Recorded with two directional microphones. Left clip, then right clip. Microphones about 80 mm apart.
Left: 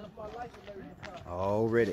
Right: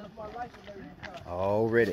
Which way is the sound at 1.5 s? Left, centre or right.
Centre.